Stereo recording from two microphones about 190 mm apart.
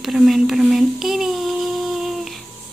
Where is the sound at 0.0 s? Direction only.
Centre (ahead or behind).